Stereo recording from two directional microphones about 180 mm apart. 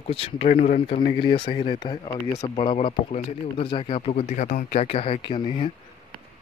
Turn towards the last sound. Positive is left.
turn(degrees=25)  # may be behind; listen again after turning